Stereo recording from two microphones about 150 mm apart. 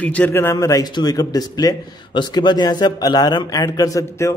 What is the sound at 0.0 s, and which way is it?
A man's voice, 10° left (ahead or behind).